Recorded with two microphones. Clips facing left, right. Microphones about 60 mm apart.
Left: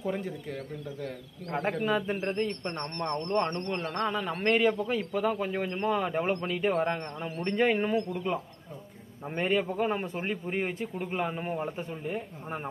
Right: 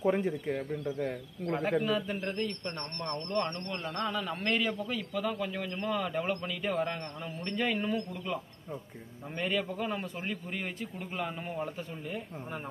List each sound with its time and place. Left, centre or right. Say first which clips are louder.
0.0 s speech: right 4 dB; right
1.9 s a man's voice: left 3 dB; left